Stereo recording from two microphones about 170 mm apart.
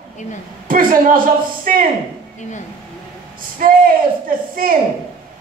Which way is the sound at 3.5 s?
55° right (ahead or behind).